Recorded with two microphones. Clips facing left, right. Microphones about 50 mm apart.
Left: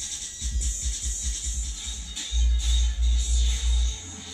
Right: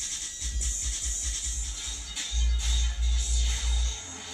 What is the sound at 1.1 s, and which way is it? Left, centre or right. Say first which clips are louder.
Music: even; right.